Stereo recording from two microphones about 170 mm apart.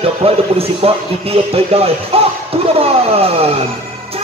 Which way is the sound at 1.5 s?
35° right (ahead or behind).